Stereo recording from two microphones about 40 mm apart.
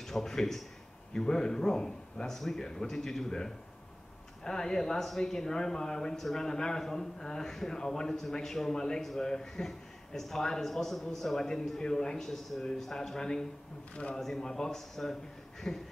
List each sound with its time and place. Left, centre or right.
0.0 s speech: centre